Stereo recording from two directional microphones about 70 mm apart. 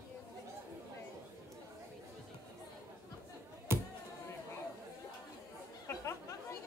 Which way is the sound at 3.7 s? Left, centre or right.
Right.